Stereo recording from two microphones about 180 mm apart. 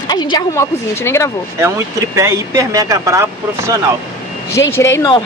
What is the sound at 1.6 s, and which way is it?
Speech, 15° right (ahead or behind).